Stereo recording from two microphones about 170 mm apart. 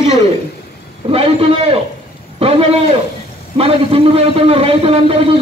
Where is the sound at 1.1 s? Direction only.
35° right (ahead or behind).